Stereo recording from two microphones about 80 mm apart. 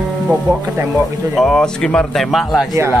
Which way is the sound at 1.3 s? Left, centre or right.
Centre.